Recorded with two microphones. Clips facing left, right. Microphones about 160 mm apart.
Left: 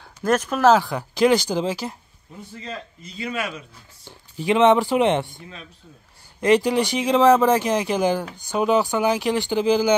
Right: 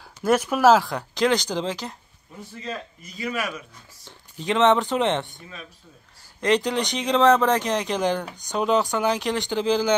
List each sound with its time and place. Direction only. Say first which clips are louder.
0.2 s speech: even; 10° right (ahead or behind); by 2.0 s 10° left (ahead or behind)
3.0 s speech: left 2 dB; 30° left (ahead or behind)
4.4 s speech: left 3 dB; 10° left (ahead or behind)
6.4 s speech: left 4 dB; 10° left (ahead or behind)